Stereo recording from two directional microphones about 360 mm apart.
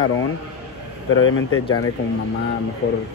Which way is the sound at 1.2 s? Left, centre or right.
Left.